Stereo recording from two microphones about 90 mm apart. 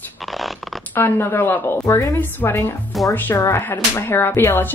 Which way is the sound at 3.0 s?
Centre (ahead or behind).